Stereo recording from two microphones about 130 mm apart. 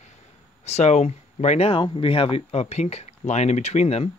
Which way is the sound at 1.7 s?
40° left (ahead or behind).